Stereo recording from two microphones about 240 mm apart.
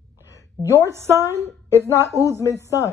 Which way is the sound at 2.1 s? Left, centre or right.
Right.